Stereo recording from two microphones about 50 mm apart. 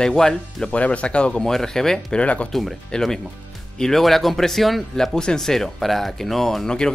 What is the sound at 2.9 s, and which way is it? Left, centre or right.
Speech, centre.